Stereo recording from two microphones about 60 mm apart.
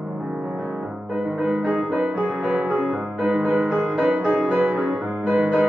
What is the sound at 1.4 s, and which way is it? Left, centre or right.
Music, centre.